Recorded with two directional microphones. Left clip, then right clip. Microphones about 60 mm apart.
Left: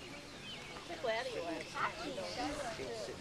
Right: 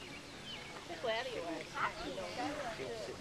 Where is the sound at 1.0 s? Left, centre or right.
Left.